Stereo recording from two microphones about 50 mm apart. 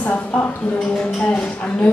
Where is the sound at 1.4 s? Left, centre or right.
Left.